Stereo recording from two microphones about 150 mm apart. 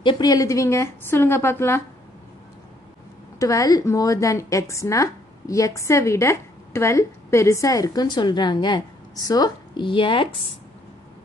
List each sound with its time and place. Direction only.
0.0 s a woman's voice: 30° left (ahead or behind)
3.3 s a woman's voice: 20° left (ahead or behind)